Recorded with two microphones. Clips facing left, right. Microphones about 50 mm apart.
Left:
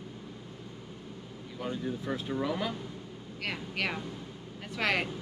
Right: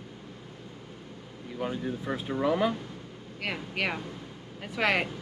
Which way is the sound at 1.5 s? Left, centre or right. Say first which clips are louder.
Right 3 dB; centre.